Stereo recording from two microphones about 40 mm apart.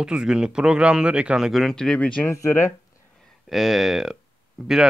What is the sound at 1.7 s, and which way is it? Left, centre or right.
Speech, centre.